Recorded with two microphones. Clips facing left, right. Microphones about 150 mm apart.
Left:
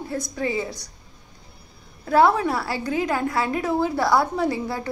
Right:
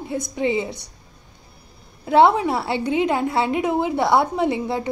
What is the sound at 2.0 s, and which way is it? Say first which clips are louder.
A woman's voice: right 3 dB; 20° right (ahead or behind).